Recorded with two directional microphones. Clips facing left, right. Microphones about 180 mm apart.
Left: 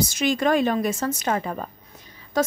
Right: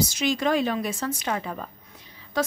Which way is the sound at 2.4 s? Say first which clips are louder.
Left 4 dB; 45° left (ahead or behind).